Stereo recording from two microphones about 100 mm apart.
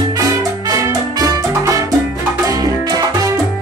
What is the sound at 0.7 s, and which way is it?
Salsa music, 35° right (ahead or behind).